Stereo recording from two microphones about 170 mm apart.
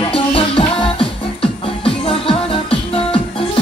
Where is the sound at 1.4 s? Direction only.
30° left (ahead or behind).